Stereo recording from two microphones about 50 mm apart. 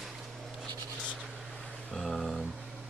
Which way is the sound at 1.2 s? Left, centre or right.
Centre.